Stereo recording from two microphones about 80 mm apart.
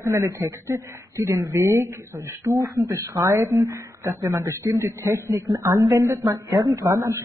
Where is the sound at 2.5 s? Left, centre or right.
Right.